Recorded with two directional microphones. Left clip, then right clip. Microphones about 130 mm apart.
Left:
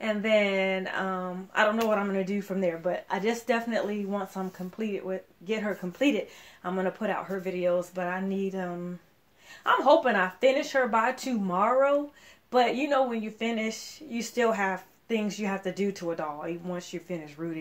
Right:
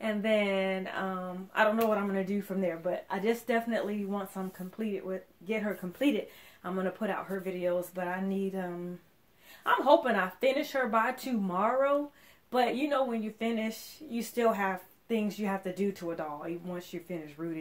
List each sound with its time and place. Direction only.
0.0 s speech: 20° left (ahead or behind)